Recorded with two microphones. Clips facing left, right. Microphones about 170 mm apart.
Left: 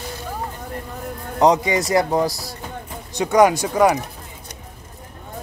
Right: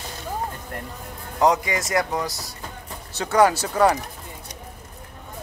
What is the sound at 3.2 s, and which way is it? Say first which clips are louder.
Speech: left 3 dB; 15° left (ahead or behind).